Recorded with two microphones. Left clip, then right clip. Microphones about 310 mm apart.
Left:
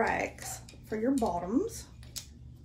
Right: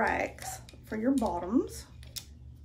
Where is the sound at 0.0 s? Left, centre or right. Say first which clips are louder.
Right 1 dB; centre.